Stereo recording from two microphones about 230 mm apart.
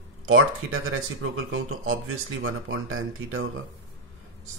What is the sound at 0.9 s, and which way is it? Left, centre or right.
Speech, right.